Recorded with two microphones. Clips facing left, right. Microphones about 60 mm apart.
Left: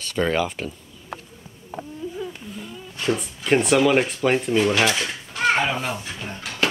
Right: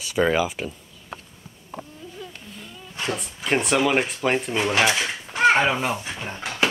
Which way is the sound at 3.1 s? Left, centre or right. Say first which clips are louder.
Left 4 dB; centre.